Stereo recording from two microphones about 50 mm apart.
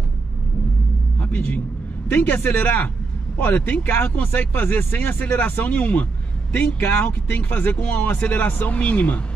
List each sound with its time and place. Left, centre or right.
1.2 s a man's voice: left